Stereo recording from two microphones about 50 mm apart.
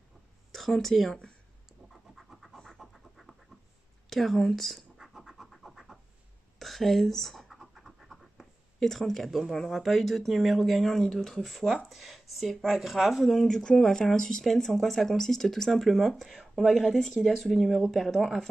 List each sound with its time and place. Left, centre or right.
0.5 s speech: centre
2.1 s scratch: centre
2.8 s a sound: centre
4.1 s speech: centre
4.9 s scratch: centre
9.4 s speech: centre
13.2 s speech: centre